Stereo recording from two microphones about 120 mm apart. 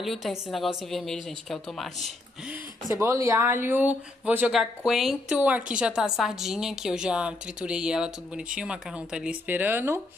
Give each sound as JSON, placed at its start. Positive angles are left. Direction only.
{"t": 0.0, "sound": "a woman's voice", "side_deg": 0}
{"t": 2.9, "sound": "speech", "side_deg": -25}
{"t": 4.5, "sound": "a woman's voice", "side_deg": -5}